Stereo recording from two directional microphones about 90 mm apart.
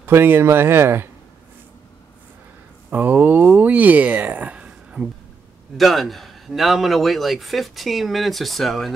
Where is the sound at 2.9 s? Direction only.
20° right (ahead or behind).